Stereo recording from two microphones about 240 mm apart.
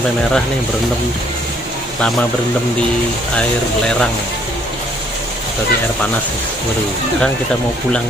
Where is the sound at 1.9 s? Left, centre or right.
Centre.